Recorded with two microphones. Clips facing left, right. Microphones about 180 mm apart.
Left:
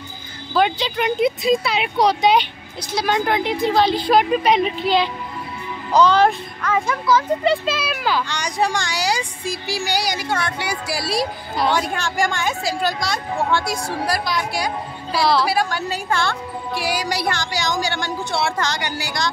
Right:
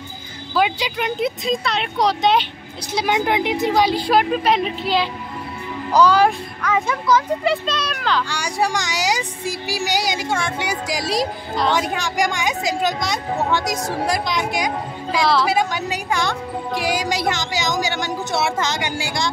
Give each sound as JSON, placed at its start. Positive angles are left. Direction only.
{"t": 0.6, "sound": "speech", "side_deg": -10}
{"t": 2.9, "sound": "a woman's voice", "side_deg": -20}
{"t": 7.2, "sound": "speech", "side_deg": 5}
{"t": 8.3, "sound": "speech", "side_deg": -10}
{"t": 11.1, "sound": "speech", "side_deg": 10}
{"t": 11.8, "sound": "a woman's voice", "side_deg": -15}